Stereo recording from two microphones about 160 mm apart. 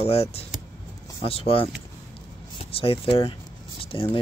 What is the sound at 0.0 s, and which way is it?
Speech, 40° left (ahead or behind).